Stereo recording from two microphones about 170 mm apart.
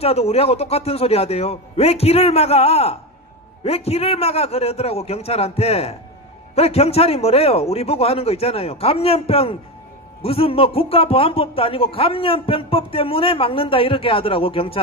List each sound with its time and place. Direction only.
0.0 s speech: 35° left (ahead or behind)